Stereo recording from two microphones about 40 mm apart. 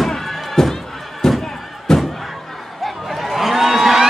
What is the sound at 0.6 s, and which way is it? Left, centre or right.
Music, centre.